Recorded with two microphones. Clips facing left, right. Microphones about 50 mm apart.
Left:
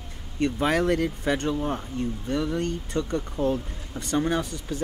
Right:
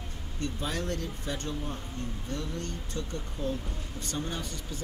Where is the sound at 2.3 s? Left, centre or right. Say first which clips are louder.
Left 11 dB; left.